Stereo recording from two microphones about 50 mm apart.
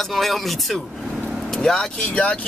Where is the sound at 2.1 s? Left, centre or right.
Left.